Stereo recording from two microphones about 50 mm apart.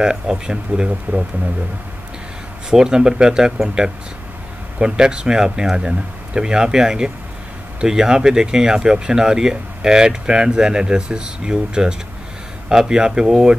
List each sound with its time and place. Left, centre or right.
0.0 s speech: centre
2.7 s speech: centre